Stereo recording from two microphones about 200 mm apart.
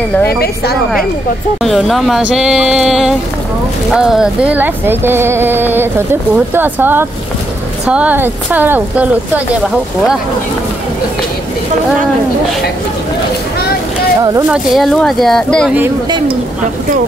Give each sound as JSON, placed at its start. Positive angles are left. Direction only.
{"t": 1.6, "sound": "speech", "side_deg": 0}
{"t": 14.5, "sound": "speech", "side_deg": 0}